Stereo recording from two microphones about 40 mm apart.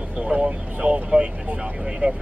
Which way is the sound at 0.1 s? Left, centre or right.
Right.